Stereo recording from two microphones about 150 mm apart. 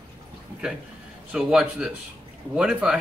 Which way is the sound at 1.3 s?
5° right (ahead or behind).